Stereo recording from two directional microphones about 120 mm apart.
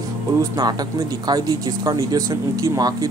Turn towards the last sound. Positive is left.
turn(degrees=-30)  # may be behind; listen again after turning